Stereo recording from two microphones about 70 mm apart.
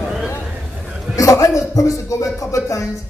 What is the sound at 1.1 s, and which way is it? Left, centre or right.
A man's voice, left.